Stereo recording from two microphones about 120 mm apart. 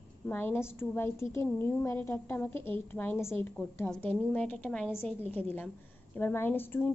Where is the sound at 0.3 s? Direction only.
20° left (ahead or behind).